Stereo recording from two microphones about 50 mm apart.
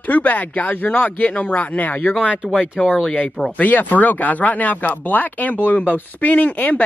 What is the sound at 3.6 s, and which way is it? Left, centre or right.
Speech, left.